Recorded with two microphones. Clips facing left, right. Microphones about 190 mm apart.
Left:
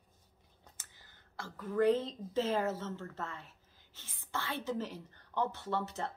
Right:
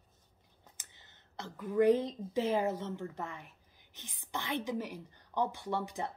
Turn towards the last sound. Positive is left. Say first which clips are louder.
# right 1 dB
turn(degrees=-15)  # may be behind; listen again after turning